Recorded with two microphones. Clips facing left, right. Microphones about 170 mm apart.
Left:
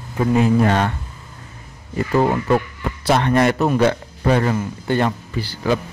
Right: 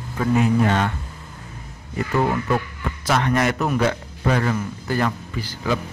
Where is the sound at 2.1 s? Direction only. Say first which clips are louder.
Left 4 dB; 35° left (ahead or behind).